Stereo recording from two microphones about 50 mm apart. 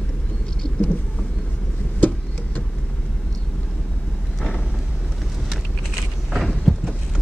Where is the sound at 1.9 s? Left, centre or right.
Left.